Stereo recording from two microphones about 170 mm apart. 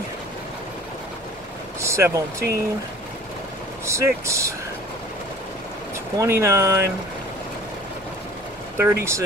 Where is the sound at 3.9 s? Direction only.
15° right (ahead or behind).